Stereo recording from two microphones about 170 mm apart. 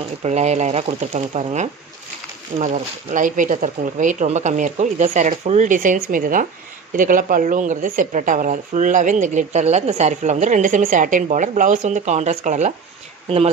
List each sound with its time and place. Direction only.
0.2 s speech: 40° right (ahead or behind)